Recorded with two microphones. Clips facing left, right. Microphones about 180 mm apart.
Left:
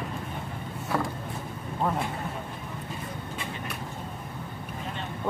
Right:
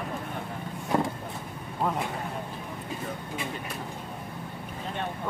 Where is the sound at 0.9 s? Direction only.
25° right (ahead or behind).